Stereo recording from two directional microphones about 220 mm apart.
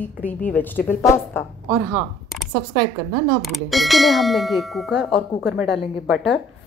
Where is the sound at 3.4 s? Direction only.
Centre (ahead or behind).